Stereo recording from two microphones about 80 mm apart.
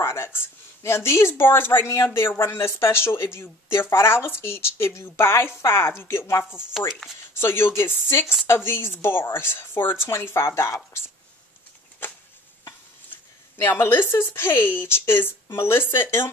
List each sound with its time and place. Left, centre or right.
0.0 s a sound: left
0.8 s a woman's voice: left
6.9 s speech: centre
7.3 s a woman's voice: left
12.0 s a sound: left
13.1 s a woman's voice: left